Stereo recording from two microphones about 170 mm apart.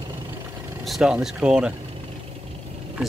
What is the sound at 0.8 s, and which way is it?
Speech, centre (ahead or behind).